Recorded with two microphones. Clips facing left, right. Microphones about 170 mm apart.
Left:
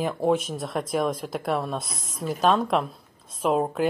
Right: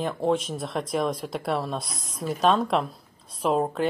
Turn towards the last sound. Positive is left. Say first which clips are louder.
# left 1 dB
turn(degrees=0)  # may be behind; listen again after turning